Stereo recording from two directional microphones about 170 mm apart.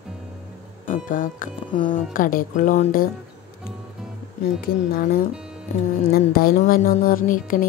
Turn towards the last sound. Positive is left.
turn(degrees=55)  # may be behind; listen again after turning